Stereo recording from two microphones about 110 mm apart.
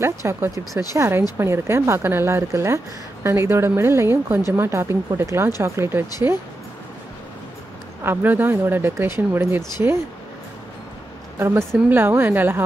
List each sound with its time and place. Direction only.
0.0 s speech: 25° right (ahead or behind)
8.0 s speech: 20° right (ahead or behind)
11.3 s speech: 20° right (ahead or behind)